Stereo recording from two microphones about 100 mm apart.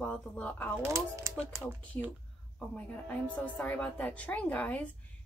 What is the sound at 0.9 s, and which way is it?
Speech, 30° right (ahead or behind).